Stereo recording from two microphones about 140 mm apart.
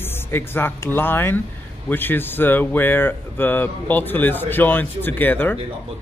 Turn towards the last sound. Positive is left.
turn(degrees=15)  # may be behind; listen again after turning